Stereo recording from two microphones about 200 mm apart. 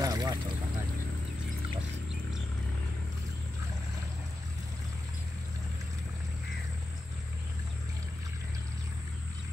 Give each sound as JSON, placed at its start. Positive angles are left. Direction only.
{"t": 0.0, "sound": "vehicle", "side_deg": -20}